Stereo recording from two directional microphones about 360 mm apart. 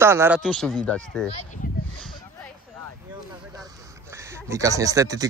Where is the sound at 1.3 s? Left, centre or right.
Centre.